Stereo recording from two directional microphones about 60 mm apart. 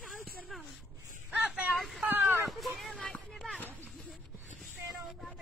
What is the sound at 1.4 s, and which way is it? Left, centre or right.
Vehicle, centre.